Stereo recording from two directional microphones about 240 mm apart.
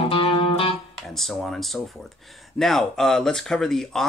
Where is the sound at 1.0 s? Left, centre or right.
Centre.